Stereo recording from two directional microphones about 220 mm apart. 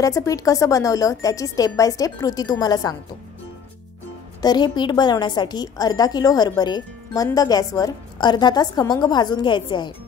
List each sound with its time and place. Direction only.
0.0 s a woman's voice: 15° left (ahead or behind)
4.4 s a woman's voice: 20° left (ahead or behind)